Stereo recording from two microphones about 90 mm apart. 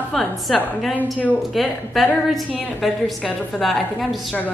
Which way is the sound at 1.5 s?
Centre (ahead or behind).